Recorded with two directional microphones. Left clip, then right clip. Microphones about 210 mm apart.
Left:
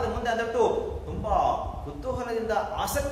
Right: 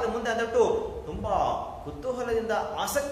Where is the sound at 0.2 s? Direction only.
15° right (ahead or behind).